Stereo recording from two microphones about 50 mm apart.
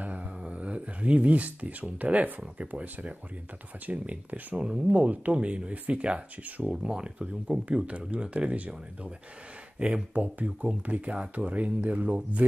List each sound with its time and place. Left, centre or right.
0.0 s a sound: right
0.4 s speech: right
4.6 s speech: centre
4.9 s speech: right